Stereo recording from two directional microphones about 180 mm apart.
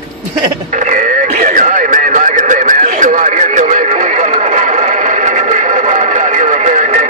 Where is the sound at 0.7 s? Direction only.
45° right (ahead or behind).